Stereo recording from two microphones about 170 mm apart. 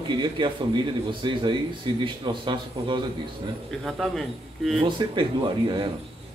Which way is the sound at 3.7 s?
Centre (ahead or behind).